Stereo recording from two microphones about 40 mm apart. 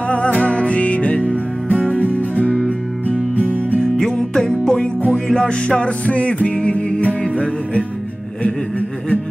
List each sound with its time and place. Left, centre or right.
0.1 s music: left
1.2 s music: right
3.1 s music: left
4.0 s music: centre; by 7.8 s left
8.4 s a sound: left